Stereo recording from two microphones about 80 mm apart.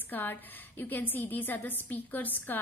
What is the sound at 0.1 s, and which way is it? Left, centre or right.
A woman's voice, left.